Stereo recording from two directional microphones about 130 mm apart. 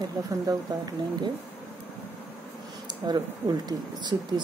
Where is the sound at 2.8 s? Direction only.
35° right (ahead or behind).